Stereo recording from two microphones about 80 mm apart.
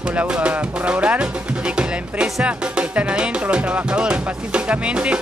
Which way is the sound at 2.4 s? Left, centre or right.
Centre.